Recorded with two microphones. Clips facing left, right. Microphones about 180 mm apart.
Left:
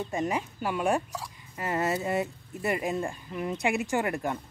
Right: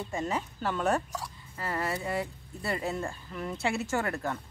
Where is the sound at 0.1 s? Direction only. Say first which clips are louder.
Left 1 dB; 15° left (ahead or behind).